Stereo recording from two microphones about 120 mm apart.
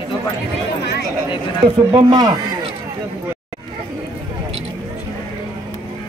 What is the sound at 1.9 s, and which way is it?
Speech, 35° right (ahead or behind).